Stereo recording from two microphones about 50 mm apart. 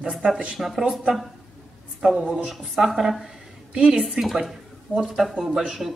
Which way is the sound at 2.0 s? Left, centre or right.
Centre.